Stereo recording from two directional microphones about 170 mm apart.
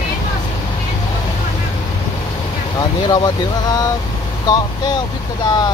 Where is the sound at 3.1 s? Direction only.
25° left (ahead or behind).